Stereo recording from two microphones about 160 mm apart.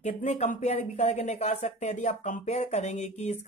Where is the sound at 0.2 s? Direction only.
50° left (ahead or behind).